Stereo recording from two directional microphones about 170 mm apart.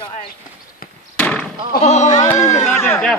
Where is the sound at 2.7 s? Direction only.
15° left (ahead or behind).